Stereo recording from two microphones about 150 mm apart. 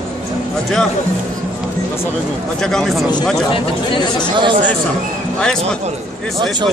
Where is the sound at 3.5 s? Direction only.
30° left (ahead or behind).